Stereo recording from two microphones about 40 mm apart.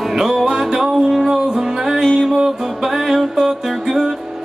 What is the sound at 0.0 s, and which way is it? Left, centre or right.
Music, centre.